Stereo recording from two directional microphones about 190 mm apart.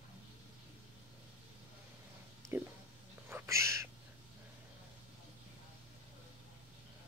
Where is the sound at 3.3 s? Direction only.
15° right (ahead or behind).